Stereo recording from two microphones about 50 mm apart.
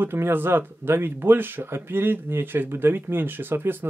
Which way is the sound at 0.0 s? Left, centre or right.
Right.